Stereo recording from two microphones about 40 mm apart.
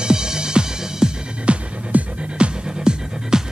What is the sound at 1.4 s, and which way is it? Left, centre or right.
Music, right.